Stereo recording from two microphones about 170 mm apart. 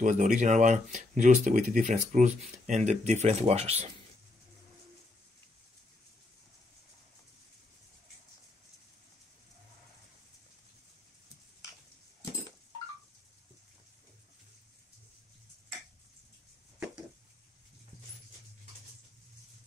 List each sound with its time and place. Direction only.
0.0 s speech: 50° right (ahead or behind)